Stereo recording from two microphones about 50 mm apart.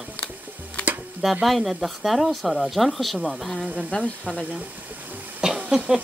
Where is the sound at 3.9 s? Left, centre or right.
Left.